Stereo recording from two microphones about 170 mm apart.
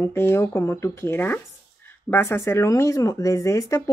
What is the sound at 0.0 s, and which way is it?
Speech, 15° left (ahead or behind).